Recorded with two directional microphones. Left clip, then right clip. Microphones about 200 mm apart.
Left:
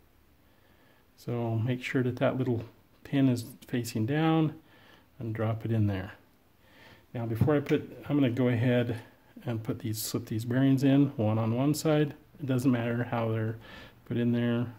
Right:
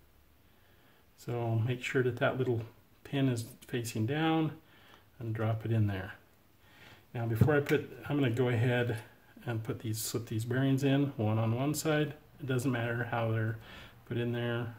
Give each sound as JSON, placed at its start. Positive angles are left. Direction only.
{"t": 1.2, "sound": "speech", "side_deg": 40}
{"t": 6.8, "sound": "a sound", "side_deg": 40}
{"t": 7.7, "sound": "speech", "side_deg": 40}